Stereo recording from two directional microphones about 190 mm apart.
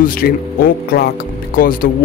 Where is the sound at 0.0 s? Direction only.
50° left (ahead or behind).